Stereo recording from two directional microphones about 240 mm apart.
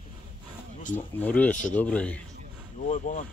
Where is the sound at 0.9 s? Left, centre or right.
Centre.